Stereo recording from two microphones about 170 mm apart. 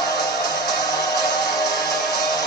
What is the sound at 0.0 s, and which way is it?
Music, 20° left (ahead or behind).